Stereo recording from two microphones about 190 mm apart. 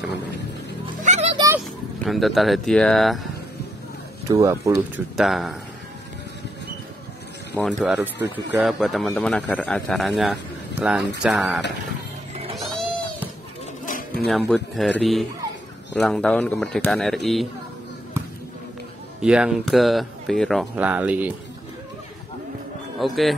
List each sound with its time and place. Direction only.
1.0 s music: 35° right (ahead or behind)
2.0 s speech: centre (ahead or behind)
4.3 s speech: 15° right (ahead or behind)
5.1 s speech: centre (ahead or behind)
7.5 s speech: centre (ahead or behind)
13.8 s music: 45° left (ahead or behind)
14.2 s speech: centre (ahead or behind)
19.2 s speech: 5° right (ahead or behind)
22.9 s a man's voice: centre (ahead or behind)